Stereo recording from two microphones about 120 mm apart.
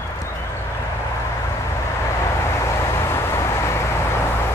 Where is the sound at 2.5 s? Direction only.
25° left (ahead or behind).